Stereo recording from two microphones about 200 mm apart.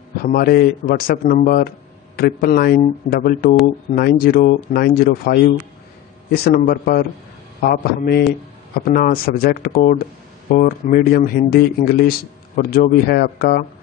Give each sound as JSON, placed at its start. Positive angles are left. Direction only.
{"t": 0.2, "sound": "speech", "side_deg": 50}